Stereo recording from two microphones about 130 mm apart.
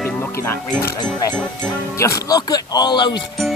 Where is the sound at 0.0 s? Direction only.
20° left (ahead or behind).